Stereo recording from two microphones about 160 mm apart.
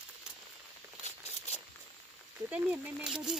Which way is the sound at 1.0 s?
45° left (ahead or behind).